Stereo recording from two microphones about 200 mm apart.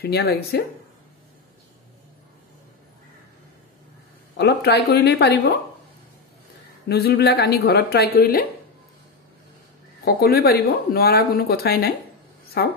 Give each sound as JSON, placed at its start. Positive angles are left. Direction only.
{"t": 0.0, "sound": "speech", "side_deg": 55}
{"t": 4.4, "sound": "speech", "side_deg": 55}
{"t": 6.9, "sound": "speech", "side_deg": 50}
{"t": 10.0, "sound": "speech", "side_deg": 50}